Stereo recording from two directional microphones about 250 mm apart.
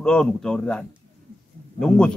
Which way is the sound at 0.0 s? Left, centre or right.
Centre.